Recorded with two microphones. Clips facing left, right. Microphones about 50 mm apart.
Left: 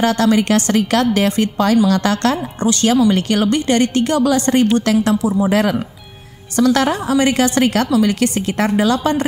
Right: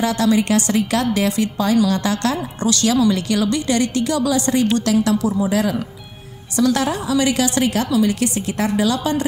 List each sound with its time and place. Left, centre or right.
0.0 s a woman's voice: left
2.6 s a woman's voice: left
5.5 s a woman's voice: left